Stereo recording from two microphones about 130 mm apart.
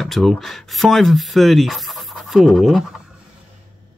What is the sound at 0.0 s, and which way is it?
Speech, centre (ahead or behind).